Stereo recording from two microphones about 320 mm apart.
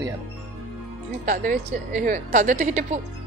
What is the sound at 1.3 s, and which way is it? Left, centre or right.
A woman's voice, right.